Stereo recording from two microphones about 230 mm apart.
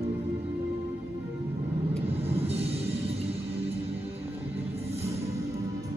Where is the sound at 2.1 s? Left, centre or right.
Right.